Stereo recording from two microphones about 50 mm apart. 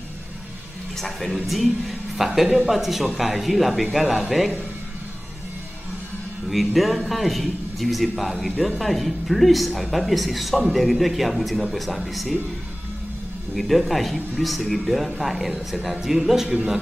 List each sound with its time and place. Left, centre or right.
0.9 s speech: centre
6.5 s speech: centre
13.6 s speech: centre